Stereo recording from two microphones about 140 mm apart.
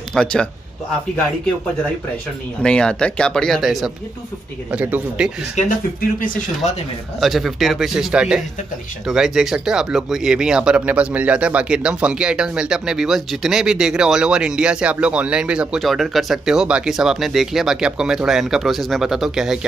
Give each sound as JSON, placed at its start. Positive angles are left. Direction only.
{"t": 0.1, "sound": "speech", "side_deg": 5}
{"t": 2.6, "sound": "speech", "side_deg": 5}
{"t": 5.6, "sound": "speech", "side_deg": 80}
{"t": 7.2, "sound": "speech", "side_deg": 0}